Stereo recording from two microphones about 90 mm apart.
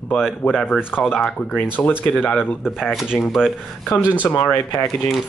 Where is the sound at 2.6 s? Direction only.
5° right (ahead or behind).